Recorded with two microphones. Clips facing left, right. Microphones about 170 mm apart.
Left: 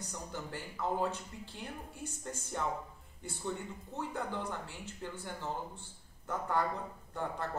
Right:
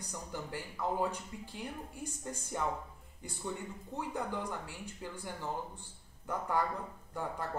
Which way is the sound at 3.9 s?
15° right (ahead or behind).